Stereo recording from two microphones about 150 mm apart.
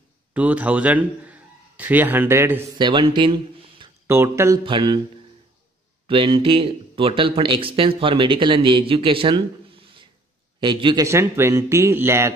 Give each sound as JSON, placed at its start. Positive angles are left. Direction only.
{"t": 0.3, "sound": "a man's voice", "side_deg": -10}
{"t": 2.8, "sound": "speech", "side_deg": -30}
{"t": 4.1, "sound": "speech", "side_deg": -15}
{"t": 4.6, "sound": "speech", "side_deg": -30}
{"t": 6.0, "sound": "speech", "side_deg": -35}
{"t": 11.1, "sound": "speech", "side_deg": -15}